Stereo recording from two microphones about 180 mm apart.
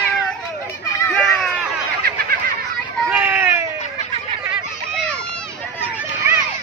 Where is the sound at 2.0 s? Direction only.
55° right (ahead or behind).